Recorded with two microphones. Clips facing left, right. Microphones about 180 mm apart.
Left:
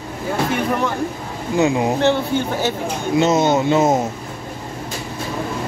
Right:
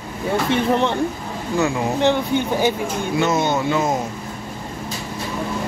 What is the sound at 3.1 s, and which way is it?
Speech, 20° left (ahead or behind).